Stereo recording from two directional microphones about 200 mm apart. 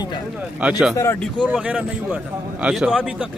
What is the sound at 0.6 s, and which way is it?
A man's voice, 5° right (ahead or behind).